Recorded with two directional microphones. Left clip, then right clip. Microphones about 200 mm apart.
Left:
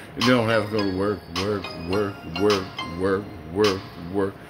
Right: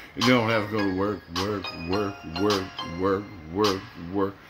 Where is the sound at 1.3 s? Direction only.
35° left (ahead or behind).